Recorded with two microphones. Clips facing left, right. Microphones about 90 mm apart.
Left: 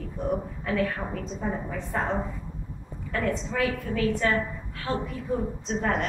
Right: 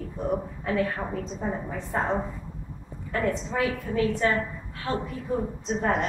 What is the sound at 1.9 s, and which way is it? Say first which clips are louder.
Speech: right 1 dB; 25° right (ahead or behind).